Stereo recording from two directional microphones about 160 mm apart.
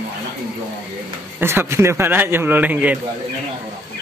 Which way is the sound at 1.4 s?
15° right (ahead or behind).